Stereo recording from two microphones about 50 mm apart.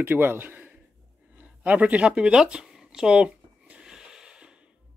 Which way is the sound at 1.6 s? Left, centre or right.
Right.